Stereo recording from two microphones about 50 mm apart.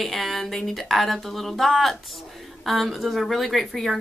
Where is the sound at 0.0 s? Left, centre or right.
Centre.